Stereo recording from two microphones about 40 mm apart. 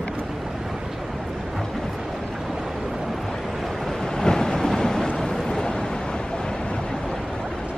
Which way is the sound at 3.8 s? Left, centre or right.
Centre.